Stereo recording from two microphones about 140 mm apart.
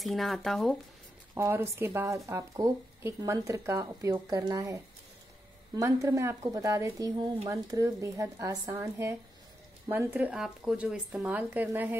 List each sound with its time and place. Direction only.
0.0 s speech: centre (ahead or behind)
1.3 s speech: 15° right (ahead or behind)
5.8 s speech: 25° right (ahead or behind)